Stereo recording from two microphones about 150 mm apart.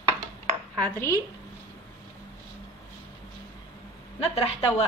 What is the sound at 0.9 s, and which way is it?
Speech, 20° left (ahead or behind).